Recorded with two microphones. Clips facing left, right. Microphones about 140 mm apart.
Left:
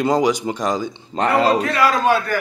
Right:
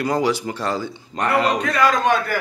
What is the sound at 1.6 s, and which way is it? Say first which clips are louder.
Speech: left 1 dB; 5° left (ahead or behind).